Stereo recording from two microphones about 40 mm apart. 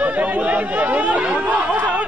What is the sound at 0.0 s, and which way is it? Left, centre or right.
Chatter, right.